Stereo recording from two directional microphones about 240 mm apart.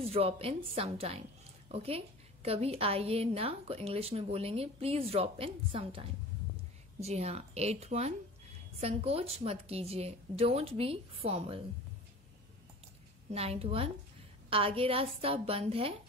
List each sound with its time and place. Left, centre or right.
0.0 s a woman's voice: right
13.3 s a woman's voice: right